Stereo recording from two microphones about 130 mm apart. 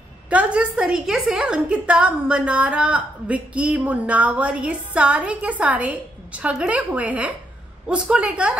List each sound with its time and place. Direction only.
0.3 s a woman's voice: 10° right (ahead or behind)